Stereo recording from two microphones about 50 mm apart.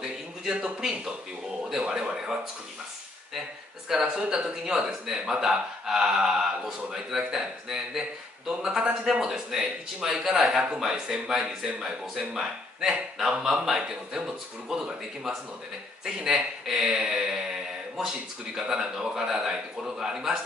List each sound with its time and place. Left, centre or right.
0.0 s a sound: centre
1.7 s speech: centre
3.9 s a man's voice: centre